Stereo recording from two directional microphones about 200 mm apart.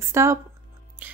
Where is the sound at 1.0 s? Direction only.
10° right (ahead or behind).